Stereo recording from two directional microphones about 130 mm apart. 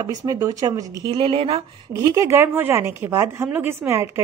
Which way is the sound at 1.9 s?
25° right (ahead or behind).